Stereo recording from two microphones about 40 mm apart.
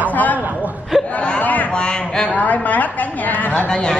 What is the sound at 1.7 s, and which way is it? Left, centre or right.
Speech, left.